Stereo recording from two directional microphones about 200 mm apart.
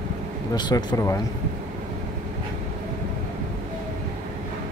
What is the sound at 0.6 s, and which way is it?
Speech, 20° left (ahead or behind).